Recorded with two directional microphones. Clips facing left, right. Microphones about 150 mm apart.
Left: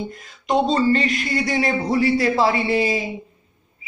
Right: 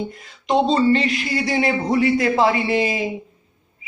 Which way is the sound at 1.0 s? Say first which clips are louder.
Even; 45° left (ahead or behind).